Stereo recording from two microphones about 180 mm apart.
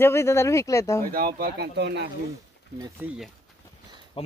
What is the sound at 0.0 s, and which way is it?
Speech, 15° left (ahead or behind).